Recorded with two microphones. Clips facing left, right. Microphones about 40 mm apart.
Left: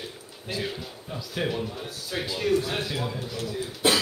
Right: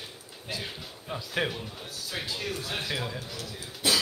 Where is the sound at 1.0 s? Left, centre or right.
Right.